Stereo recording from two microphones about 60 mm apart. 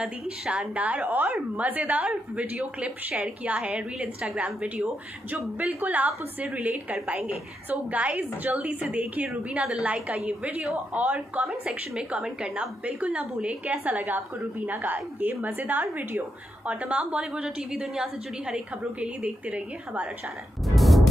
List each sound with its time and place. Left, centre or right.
0.0 s a woman's voice: centre
0.7 s a woman's voice: right
11.6 s a woman's voice: centre
18.9 s a woman's voice: right
20.6 s a sound: centre